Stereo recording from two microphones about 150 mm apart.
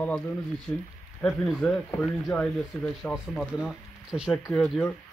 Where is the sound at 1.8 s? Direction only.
20° left (ahead or behind).